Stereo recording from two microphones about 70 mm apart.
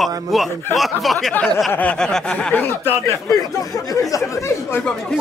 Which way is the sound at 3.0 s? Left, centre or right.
Left.